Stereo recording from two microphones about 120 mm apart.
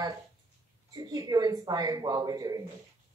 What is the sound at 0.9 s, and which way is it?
Speech, 30° right (ahead or behind).